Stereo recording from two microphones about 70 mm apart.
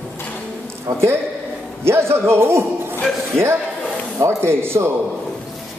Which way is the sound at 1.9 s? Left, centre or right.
Right.